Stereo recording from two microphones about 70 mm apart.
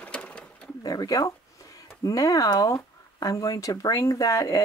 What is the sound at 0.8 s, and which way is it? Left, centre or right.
Speech, left.